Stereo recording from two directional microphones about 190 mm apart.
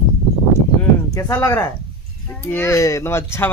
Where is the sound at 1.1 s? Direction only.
15° left (ahead or behind).